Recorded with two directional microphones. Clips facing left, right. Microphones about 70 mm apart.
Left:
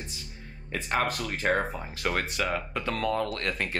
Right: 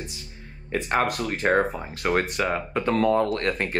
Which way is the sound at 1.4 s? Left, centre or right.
Right.